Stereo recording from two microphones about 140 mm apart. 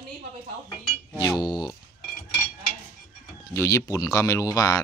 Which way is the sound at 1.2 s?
30° left (ahead or behind).